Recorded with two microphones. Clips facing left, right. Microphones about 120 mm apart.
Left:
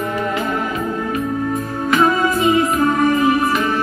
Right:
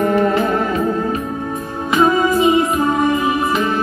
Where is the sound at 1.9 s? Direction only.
15° right (ahead or behind).